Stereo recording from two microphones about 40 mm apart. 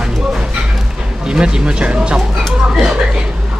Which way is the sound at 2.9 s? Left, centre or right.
Right.